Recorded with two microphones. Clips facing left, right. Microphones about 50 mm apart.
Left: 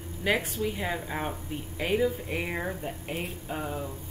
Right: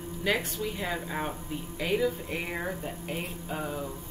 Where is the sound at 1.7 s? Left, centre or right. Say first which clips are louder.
Left 1 dB; centre.